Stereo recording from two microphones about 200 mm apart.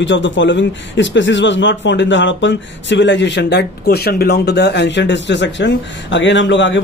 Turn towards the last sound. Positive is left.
turn(degrees=65)  # may be behind; listen again after turning